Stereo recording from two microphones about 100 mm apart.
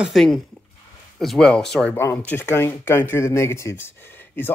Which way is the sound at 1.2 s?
5° left (ahead or behind).